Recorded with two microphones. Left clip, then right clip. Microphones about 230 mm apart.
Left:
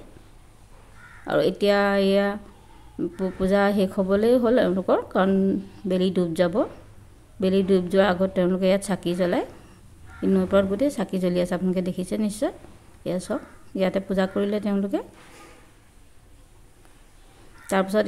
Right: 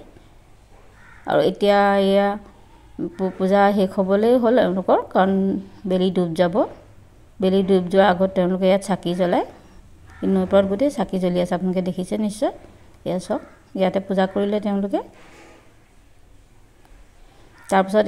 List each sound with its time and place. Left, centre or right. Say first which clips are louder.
1.2 s speech: right 4 dB; centre
17.6 s speech: right 5 dB; centre